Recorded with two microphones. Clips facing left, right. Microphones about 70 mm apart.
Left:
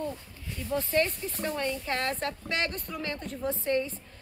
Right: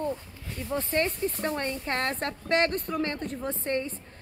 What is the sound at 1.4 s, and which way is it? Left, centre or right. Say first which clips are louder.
A woman's voice: left 4 dB; right.